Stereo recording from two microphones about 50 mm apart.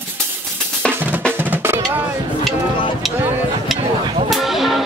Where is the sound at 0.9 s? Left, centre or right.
Right.